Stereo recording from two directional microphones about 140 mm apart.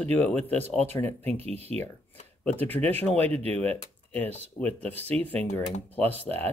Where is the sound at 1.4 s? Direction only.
45° right (ahead or behind).